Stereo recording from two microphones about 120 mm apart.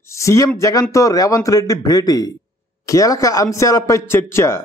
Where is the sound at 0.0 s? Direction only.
25° left (ahead or behind).